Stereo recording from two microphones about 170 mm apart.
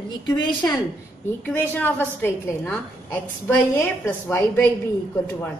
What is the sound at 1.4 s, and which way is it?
A woman's voice, 10° left (ahead or behind).